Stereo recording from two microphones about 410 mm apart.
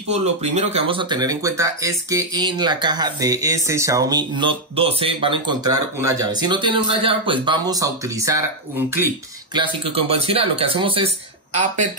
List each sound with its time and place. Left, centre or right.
0.1 s speech: centre